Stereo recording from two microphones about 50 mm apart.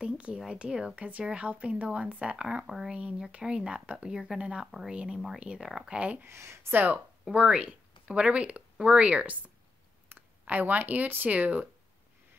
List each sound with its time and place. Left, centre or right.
0.0 s a sound: right
0.5 s speech: centre
0.9 s speech: right
2.4 s speech: centre
2.9 s speech: right
4.1 s speech: centre
4.9 s speech: centre
5.9 s speech: right
6.2 s speech: right
6.7 s speech: right
7.3 s speech: right
10.0 s speech: right